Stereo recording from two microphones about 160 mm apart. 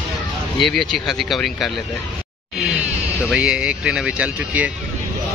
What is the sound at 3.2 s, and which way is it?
Speech, 5° right (ahead or behind).